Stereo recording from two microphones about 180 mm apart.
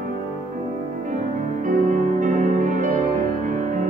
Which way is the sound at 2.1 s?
45° right (ahead or behind).